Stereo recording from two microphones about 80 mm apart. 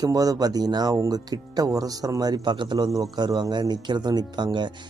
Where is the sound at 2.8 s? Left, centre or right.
Right.